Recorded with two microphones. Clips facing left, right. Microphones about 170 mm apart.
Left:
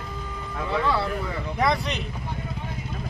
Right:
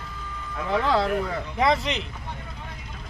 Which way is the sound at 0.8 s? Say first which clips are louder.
Right 4 dB; 90° right.